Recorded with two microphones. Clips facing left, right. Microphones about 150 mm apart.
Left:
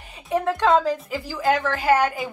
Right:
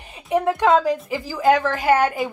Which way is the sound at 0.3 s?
15° right (ahead or behind).